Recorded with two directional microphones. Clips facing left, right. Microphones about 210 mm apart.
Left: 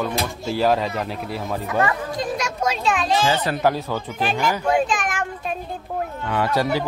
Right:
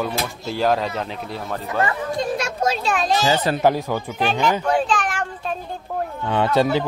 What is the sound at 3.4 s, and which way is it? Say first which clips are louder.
Speech: right 2 dB; 20° right (ahead or behind).